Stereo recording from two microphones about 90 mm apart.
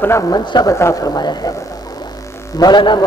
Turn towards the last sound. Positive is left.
turn(degrees=55)  # may be behind; listen again after turning